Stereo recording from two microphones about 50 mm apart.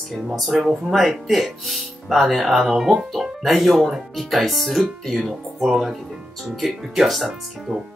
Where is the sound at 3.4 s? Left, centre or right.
Centre.